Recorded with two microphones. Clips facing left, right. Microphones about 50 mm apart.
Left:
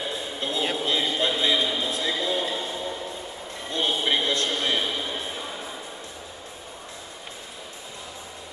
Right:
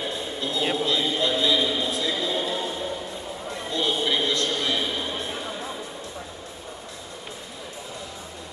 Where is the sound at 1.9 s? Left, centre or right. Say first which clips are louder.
Right 1 dB; left.